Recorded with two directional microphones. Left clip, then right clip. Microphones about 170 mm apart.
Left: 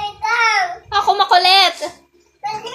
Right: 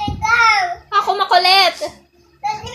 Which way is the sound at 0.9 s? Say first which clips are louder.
Left 2 dB; 5° left (ahead or behind).